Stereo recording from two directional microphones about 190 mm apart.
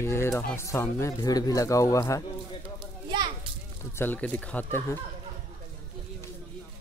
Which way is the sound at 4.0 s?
10° left (ahead or behind).